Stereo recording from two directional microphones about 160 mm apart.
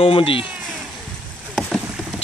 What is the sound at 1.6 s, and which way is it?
Rowboat, centre (ahead or behind).